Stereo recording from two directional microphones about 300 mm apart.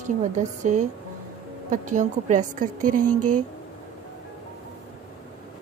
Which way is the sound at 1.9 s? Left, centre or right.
Right.